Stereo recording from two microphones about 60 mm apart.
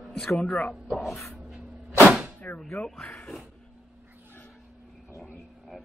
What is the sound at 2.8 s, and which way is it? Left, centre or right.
Speech, centre.